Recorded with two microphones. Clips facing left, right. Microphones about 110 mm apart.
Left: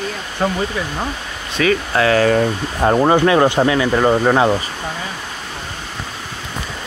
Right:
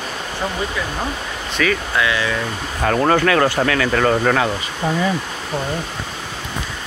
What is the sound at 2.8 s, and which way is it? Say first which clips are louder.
Speech: left 3 dB; 15° left (ahead or behind).